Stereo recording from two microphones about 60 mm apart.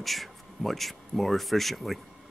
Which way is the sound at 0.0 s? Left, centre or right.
Centre.